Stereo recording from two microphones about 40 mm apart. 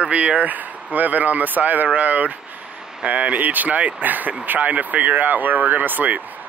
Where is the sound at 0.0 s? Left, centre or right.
Right.